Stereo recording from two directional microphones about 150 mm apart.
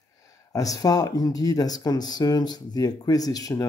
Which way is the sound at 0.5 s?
25° left (ahead or behind).